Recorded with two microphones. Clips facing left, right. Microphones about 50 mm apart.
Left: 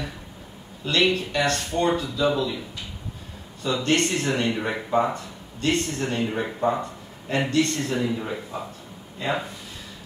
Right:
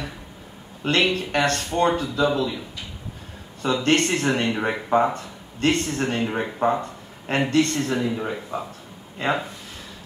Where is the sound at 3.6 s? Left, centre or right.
Right.